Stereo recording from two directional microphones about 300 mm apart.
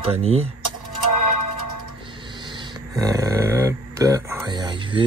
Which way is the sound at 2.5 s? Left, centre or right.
Centre.